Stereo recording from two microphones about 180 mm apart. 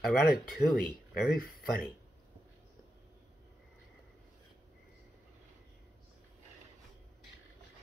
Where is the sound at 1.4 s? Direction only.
55° left (ahead or behind).